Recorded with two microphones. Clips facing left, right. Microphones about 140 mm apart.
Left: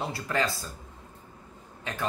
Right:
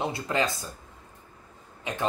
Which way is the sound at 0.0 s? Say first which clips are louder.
Right 2 dB; 20° right (ahead or behind).